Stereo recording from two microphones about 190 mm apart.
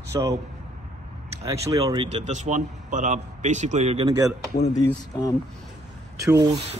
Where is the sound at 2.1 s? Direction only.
35° right (ahead or behind).